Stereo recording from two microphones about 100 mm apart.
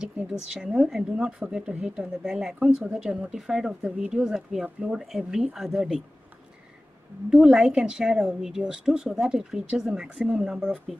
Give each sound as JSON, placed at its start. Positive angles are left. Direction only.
{"t": 0.0, "sound": "a woman's voice", "side_deg": -10}
{"t": 7.2, "sound": "a woman's voice", "side_deg": -10}